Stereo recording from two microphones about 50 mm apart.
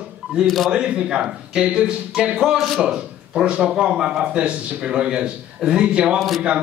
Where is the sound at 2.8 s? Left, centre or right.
Right.